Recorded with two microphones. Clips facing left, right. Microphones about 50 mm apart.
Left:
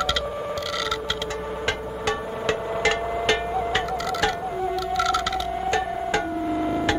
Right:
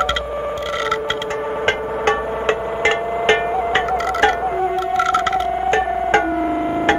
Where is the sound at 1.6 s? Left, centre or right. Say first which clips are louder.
Right 9 dB; right.